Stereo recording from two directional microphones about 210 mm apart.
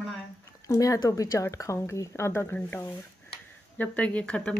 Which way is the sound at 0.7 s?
15° left (ahead or behind).